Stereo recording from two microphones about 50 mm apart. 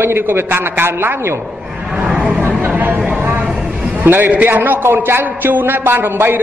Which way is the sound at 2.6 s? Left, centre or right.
Right.